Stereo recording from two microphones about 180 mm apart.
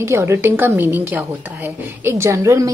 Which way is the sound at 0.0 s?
15° right (ahead or behind).